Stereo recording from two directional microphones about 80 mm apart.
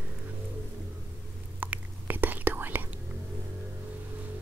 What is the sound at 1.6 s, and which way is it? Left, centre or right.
Whispering, right.